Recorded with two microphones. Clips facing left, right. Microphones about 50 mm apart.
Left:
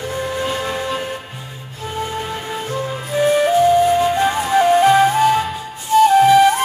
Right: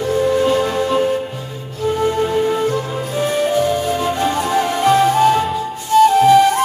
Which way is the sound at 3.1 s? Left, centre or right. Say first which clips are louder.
Left 4 dB; centre.